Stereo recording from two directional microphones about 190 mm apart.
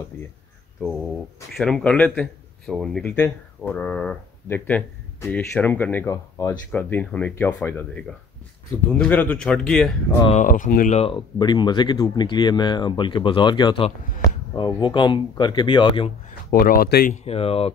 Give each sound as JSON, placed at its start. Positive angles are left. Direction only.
{"t": 1.6, "sound": "speech", "side_deg": 5}
{"t": 10.4, "sound": "speech", "side_deg": 45}
{"t": 16.4, "sound": "speech", "side_deg": 50}
{"t": 17.2, "sound": "speech", "side_deg": 30}